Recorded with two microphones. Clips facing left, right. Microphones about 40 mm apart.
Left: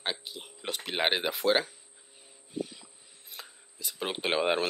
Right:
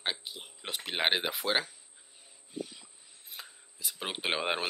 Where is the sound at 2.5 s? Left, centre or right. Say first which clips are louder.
Left 4 dB; centre.